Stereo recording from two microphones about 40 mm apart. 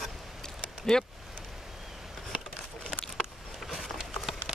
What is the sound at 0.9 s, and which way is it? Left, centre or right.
Speech, centre.